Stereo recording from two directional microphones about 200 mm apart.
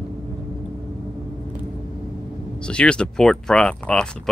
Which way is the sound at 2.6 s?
5° left (ahead or behind).